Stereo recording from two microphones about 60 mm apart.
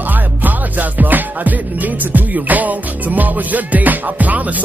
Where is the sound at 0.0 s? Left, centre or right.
Right.